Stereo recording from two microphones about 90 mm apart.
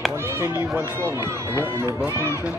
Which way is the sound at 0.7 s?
30° right (ahead or behind).